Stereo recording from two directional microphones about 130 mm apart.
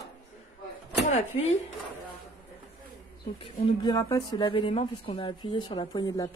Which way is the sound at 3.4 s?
35° left (ahead or behind).